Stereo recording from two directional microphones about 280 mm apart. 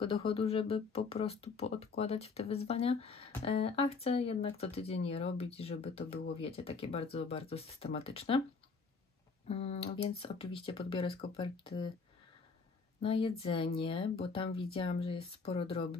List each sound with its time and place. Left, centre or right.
0.0 s speech: centre
9.5 s speech: left
13.0 s speech: centre